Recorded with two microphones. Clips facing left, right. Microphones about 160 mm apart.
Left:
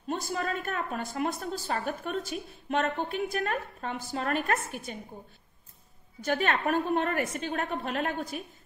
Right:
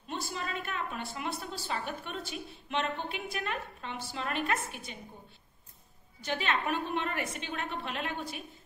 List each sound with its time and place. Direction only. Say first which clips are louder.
0.1 s a woman's voice: left 6 dB; 45° left (ahead or behind)
6.2 s a woman's voice: left 5 dB; 50° left (ahead or behind)